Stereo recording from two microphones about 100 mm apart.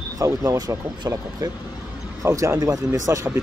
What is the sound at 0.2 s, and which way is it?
Speech, 35° right (ahead or behind).